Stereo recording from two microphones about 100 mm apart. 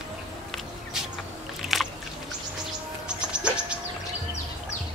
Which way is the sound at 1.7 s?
Centre (ahead or behind).